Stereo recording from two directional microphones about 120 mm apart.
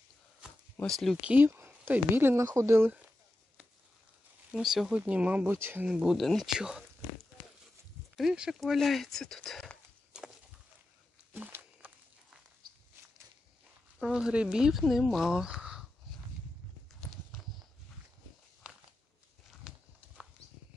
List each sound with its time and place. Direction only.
0.7 s speech: 5° left (ahead or behind)
1.2 s speech: 15° right (ahead or behind)
4.5 s speech: 5° right (ahead or behind); by 5.9 s 20° right (ahead or behind)
5.9 s speech: 5° right (ahead or behind)
8.2 s speech: 5° right (ahead or behind)
11.3 s walk: 15° right (ahead or behind)
13.9 s speech: 5° right (ahead or behind)
17.4 s walk: centre (ahead or behind)
18.6 s a sound: 10° right (ahead or behind)
19.7 s clip-clop: 5° right (ahead or behind)